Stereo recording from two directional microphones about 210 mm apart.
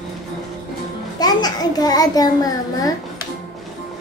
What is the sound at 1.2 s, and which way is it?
A child's voice, 20° left (ahead or behind).